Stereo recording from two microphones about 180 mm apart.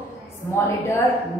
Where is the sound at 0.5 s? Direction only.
15° left (ahead or behind).